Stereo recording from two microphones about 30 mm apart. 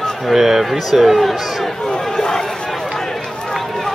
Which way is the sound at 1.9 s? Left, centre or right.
Centre.